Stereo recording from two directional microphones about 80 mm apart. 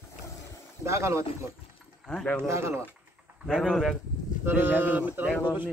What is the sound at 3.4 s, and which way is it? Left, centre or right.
Speech, centre.